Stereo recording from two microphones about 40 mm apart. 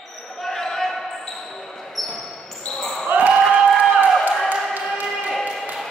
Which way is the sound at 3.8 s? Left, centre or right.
Right.